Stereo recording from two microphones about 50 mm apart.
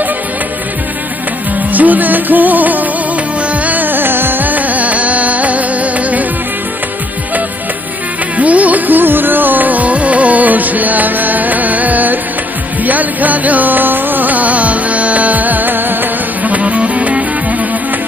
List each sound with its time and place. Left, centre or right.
1.7 s music: right
8.4 s music: right